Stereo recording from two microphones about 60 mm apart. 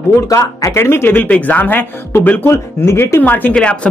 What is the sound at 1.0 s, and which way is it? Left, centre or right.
Speech, left.